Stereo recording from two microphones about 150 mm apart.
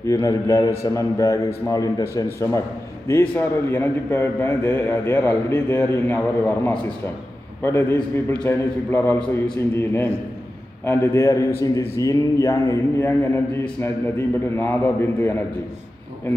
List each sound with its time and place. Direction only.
0.0 s a man's voice: 20° left (ahead or behind)